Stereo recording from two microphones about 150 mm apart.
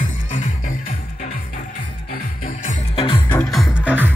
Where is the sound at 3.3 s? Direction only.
Centre (ahead or behind).